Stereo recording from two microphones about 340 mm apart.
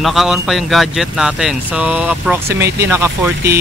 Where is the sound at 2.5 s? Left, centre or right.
Right.